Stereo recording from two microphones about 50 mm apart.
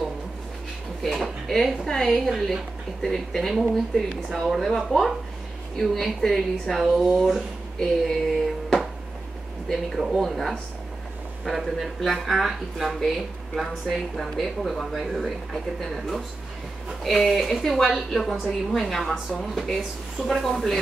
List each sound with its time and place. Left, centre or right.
1.0 s speech: centre
6.7 s speech: centre
8.0 s a sound: centre
9.7 s speech: centre